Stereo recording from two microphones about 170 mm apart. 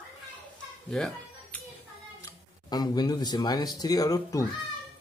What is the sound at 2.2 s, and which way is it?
Speech, 25° left (ahead or behind).